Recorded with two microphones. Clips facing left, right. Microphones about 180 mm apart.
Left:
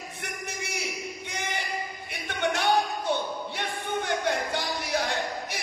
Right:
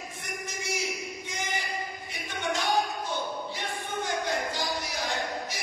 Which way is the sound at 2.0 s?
65° left (ahead or behind).